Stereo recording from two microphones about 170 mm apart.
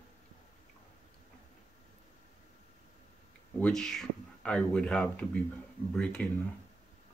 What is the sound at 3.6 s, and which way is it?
Speech, 5° left (ahead or behind).